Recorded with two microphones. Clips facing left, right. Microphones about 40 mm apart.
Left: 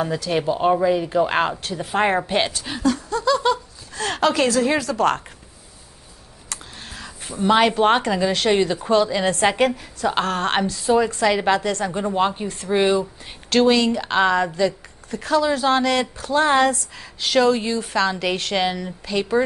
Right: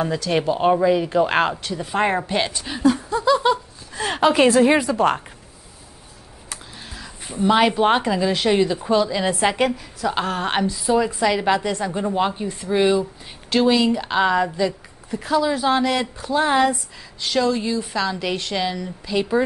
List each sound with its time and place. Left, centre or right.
0.0 s speech: centre
2.8 s a sound: centre
4.5 s a woman's voice: right
6.5 s a sound: centre
7.6 s speech: centre
13.5 s speech: centre
17.3 s speech: centre
18.6 s speech: left
19.0 s speech: centre